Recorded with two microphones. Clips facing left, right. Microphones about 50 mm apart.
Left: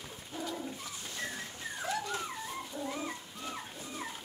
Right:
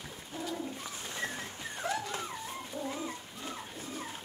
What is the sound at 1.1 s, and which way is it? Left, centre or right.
Bird, right.